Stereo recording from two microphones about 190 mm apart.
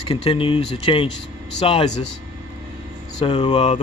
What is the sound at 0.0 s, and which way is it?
Speech, 30° left (ahead or behind).